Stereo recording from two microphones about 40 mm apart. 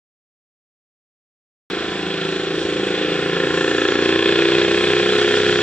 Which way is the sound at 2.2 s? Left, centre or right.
Left.